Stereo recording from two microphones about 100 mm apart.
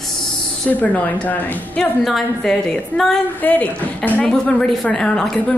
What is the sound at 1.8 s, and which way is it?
A woman's voice, 5° left (ahead or behind).